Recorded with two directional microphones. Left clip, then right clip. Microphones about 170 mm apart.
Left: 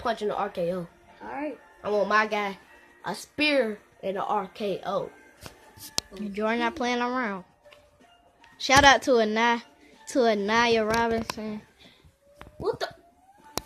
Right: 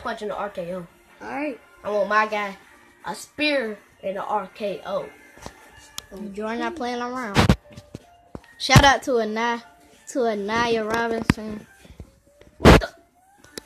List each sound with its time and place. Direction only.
0.0 s a woman's voice: 55° left (ahead or behind)
1.2 s speech: 60° right (ahead or behind)
1.8 s a woman's voice: 55° left (ahead or behind)
5.9 s speech: 10° left (ahead or behind)
8.5 s a woman's voice: centre (ahead or behind)